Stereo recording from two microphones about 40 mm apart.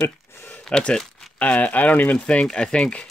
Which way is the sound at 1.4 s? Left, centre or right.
Left.